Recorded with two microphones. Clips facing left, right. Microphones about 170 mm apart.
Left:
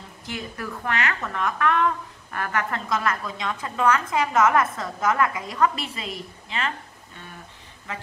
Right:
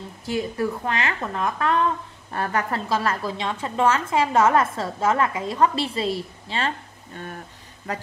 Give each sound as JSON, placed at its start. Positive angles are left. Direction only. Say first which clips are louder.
{"t": 0.3, "sound": "a woman's voice", "louder": "right 8 dB", "side_deg": -25}
{"t": 7.9, "sound": "speech", "louder": "right 5 dB", "side_deg": -40}